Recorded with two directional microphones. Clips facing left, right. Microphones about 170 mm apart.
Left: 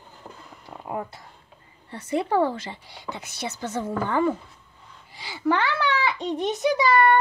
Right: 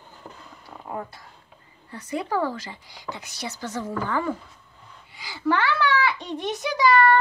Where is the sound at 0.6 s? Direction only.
20° left (ahead or behind).